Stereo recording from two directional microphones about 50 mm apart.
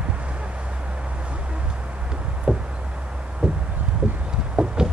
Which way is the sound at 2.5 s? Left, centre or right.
Right.